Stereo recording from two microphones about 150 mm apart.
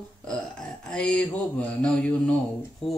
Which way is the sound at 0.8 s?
5° left (ahead or behind).